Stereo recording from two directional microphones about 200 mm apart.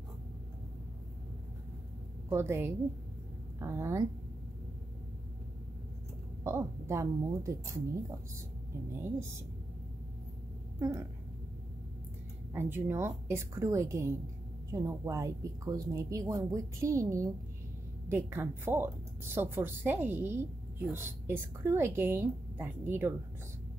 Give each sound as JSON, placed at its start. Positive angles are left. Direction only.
{"t": 2.2, "sound": "a woman's voice", "side_deg": -15}
{"t": 6.4, "sound": "a woman's voice", "side_deg": -15}
{"t": 10.8, "sound": "speech", "side_deg": -15}
{"t": 12.5, "sound": "a woman's voice", "side_deg": -10}